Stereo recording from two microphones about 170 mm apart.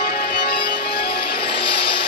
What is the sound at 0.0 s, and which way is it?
Music, 65° left (ahead or behind).